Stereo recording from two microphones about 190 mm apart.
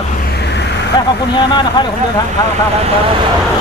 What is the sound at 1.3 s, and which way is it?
Speech, 25° left (ahead or behind).